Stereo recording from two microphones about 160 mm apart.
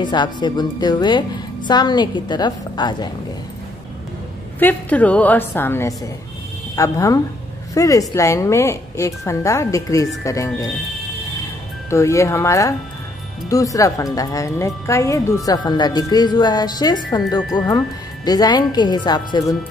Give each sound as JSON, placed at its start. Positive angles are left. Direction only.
{"t": 0.0, "sound": "speech", "side_deg": 30}
{"t": 4.6, "sound": "a woman's voice", "side_deg": 10}
{"t": 11.9, "sound": "speech", "side_deg": 20}